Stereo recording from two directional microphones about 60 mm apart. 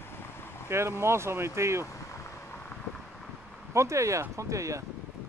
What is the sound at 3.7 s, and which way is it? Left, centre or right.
Speech, right.